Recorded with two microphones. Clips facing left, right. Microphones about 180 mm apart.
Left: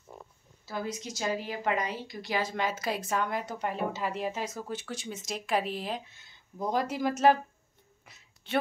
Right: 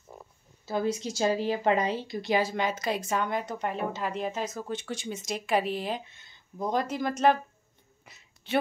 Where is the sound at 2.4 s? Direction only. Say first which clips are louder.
Right 2 dB; centre (ahead or behind).